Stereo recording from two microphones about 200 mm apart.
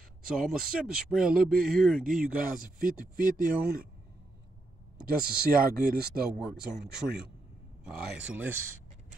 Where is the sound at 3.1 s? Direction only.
40° right (ahead or behind).